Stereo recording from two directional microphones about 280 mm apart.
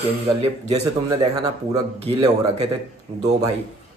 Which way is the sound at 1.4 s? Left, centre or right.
Centre.